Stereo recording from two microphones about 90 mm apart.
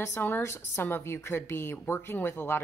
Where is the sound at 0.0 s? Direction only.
30° left (ahead or behind).